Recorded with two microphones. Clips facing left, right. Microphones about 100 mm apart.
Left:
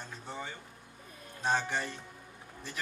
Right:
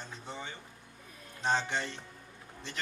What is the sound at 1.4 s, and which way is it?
Speech, 5° left (ahead or behind).